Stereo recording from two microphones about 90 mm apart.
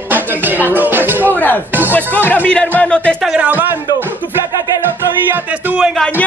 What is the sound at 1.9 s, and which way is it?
Speech, 20° left (ahead or behind).